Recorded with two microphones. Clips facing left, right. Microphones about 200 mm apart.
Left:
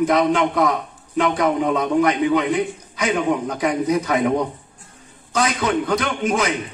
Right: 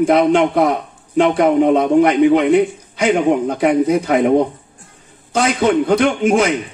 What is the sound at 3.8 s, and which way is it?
Speech, 30° right (ahead or behind).